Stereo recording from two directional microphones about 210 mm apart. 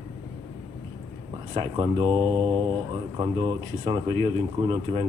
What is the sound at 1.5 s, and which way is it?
Speech, 25° right (ahead or behind).